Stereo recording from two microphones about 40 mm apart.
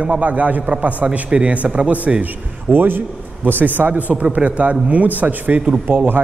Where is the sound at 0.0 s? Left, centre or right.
Right.